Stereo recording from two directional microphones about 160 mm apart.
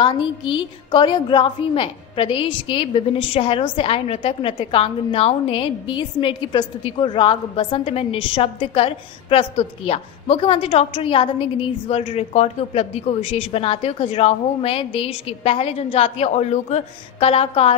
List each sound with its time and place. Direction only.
0.0 s a woman's voice: 30° left (ahead or behind)